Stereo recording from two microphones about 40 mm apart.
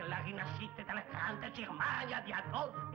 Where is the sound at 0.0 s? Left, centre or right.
Right.